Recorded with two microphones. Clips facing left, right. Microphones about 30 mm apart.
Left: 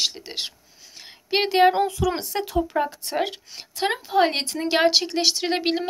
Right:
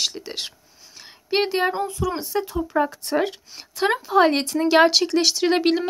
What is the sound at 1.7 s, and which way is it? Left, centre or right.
Speech, left.